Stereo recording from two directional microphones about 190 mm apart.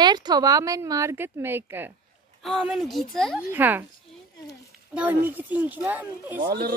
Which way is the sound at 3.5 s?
10° right (ahead or behind).